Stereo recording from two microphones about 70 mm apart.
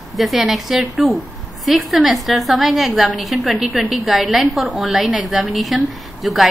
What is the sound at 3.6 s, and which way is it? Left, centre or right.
Speech, centre.